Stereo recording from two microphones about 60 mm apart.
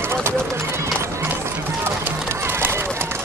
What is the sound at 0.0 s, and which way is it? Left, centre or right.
Run, right.